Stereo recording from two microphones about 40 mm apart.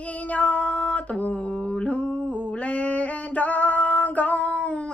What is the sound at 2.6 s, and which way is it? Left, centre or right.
Female singing, left.